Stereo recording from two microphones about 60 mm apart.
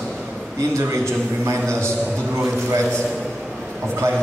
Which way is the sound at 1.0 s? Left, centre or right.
Right.